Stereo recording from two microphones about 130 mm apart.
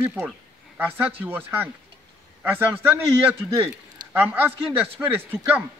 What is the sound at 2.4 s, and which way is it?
A man's voice, 15° right (ahead or behind).